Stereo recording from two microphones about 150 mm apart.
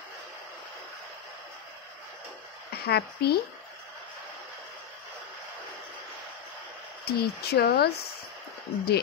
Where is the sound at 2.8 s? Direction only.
90° left.